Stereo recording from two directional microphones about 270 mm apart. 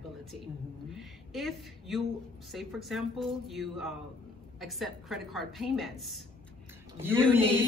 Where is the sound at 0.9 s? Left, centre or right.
Centre.